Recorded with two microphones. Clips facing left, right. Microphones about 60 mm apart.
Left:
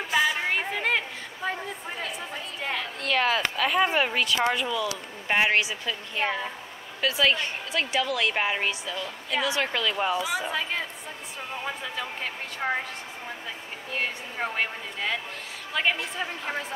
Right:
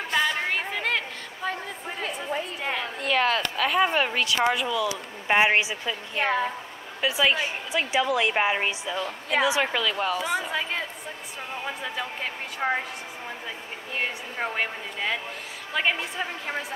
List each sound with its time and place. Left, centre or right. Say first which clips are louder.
0.1 s a sound: left 1 dB; centre
2.1 s a woman's voice: right 5 dB; centre
5.3 s a woman's voice: right 2 dB; centre
6.2 s a woman's voice: right 4 dB; right
7.0 s a woman's voice: right 1 dB; centre
11.6 s a woman's voice: right 2 dB; centre
13.9 s a woman's voice: right 1 dB; centre